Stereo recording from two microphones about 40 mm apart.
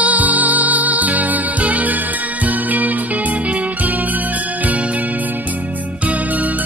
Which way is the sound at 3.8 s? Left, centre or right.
Right.